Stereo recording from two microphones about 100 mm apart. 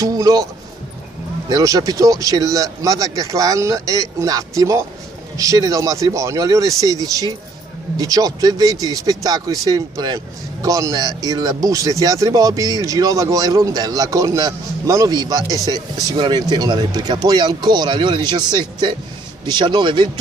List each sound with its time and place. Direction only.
0.0 s a man's voice: 40° right (ahead or behind)
1.5 s speech: 35° right (ahead or behind); by 20.1 s 50° right (ahead or behind)